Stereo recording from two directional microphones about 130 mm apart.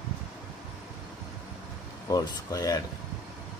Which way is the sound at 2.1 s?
25° left (ahead or behind).